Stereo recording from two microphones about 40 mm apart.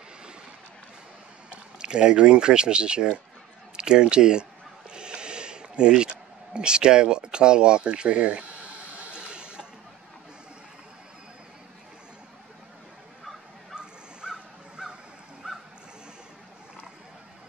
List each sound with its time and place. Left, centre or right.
1.8 s speech: right
4.9 s a sound: right
13.7 s crow: centre
15.4 s waves: centre